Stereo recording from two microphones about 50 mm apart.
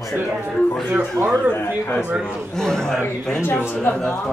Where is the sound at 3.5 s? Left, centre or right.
Left.